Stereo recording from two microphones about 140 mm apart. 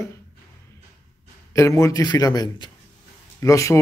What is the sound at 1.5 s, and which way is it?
A man's voice, 20° left (ahead or behind).